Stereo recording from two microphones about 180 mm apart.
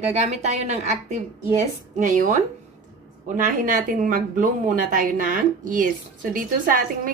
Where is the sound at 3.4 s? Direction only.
50° right (ahead or behind).